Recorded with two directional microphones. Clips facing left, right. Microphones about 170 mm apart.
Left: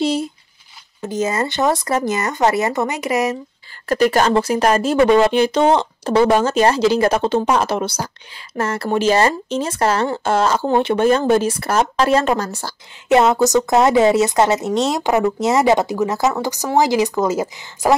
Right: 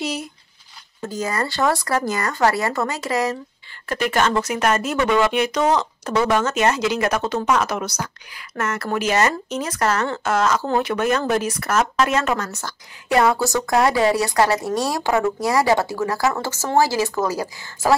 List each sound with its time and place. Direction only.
0.0 s a sound: 30° left (ahead or behind)
1.0 s speech: 20° left (ahead or behind)
3.9 s speech: 40° left (ahead or behind); by 17.9 s 20° left (ahead or behind)